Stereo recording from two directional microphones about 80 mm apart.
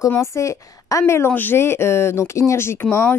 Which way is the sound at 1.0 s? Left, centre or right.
Left.